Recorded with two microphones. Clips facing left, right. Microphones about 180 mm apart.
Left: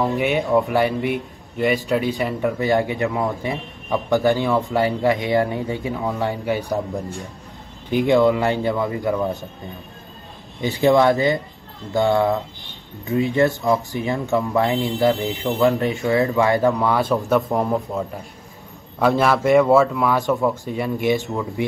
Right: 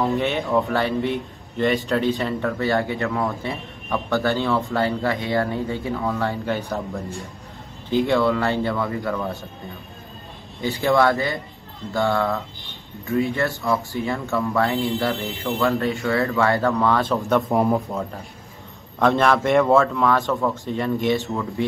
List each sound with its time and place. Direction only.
0.2 s a man's voice: 15° left (ahead or behind)
10.6 s speech: 20° left (ahead or behind)
17.2 s a man's voice: centre (ahead or behind)